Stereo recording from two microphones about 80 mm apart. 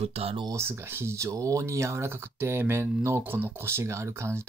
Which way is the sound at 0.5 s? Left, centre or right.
Right.